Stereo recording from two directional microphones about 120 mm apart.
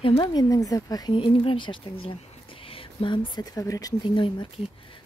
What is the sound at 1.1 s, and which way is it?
Speech, 45° left (ahead or behind).